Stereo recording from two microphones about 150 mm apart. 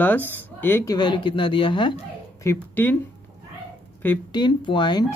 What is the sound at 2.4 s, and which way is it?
Speech, 15° left (ahead or behind).